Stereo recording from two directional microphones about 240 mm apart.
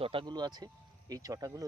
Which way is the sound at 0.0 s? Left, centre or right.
Right.